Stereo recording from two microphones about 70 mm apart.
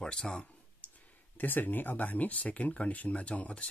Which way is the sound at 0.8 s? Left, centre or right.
Centre.